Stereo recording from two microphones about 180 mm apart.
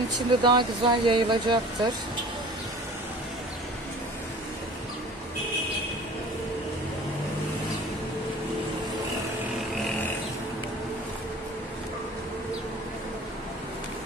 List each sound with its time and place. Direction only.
0.3 s speech: 25° right (ahead or behind)